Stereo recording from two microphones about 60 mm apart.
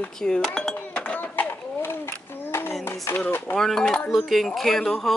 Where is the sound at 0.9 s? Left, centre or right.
Centre.